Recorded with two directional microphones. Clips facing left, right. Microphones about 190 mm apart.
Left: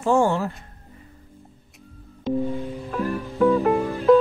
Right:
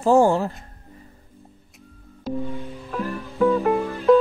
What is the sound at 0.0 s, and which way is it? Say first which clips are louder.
Speech: right 3 dB; 35° right (ahead or behind).